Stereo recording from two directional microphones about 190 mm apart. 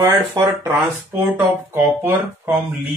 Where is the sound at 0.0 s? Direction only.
20° right (ahead or behind).